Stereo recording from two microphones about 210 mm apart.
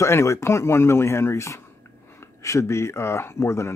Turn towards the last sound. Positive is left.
turn(degrees=15)  # may be behind; listen again after turning